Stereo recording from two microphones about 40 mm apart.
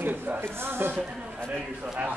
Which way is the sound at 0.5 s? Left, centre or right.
Right.